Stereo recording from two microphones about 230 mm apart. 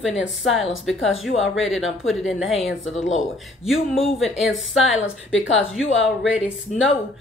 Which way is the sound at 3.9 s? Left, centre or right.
Centre.